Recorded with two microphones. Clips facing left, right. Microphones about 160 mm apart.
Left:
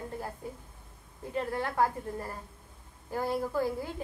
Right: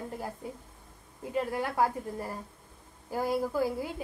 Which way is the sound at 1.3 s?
10° right (ahead or behind).